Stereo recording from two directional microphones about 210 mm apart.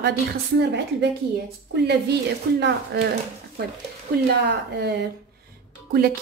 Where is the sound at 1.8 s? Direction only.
50° right (ahead or behind).